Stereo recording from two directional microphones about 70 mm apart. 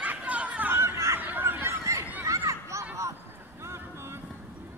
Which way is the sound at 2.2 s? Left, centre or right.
Right.